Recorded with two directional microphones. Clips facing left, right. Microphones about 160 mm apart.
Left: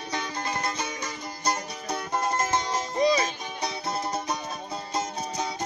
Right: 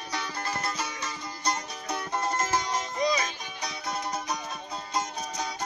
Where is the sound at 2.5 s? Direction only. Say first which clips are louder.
Left 2 dB; 25° left (ahead or behind).